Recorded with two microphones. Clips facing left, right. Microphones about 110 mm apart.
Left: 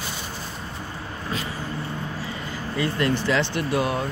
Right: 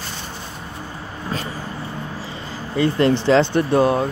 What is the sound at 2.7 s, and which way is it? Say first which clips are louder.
Speech: right 7 dB; 30° right (ahead or behind).